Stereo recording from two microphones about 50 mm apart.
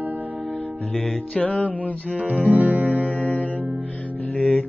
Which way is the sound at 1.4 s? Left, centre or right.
Left.